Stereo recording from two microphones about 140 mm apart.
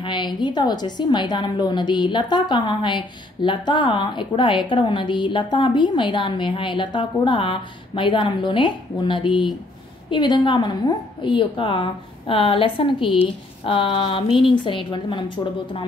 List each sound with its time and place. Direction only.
0.0 s a woman's voice: 35° left (ahead or behind)